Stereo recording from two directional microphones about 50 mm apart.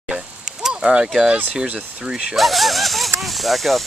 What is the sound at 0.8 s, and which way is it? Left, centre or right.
Speech, centre.